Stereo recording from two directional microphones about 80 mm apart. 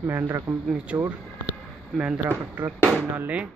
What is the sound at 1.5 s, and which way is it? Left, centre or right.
Speech, centre.